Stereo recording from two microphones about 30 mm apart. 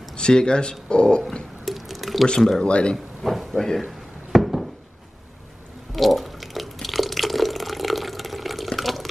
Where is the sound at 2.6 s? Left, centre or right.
Left.